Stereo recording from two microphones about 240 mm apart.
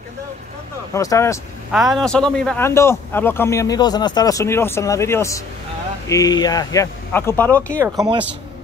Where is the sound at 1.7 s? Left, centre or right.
Centre.